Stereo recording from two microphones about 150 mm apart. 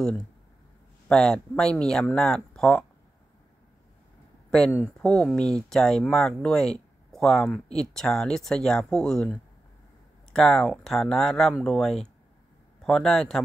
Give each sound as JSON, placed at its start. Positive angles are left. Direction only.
{"t": 1.0, "sound": "speech", "side_deg": 5}
{"t": 4.5, "sound": "speech", "side_deg": 5}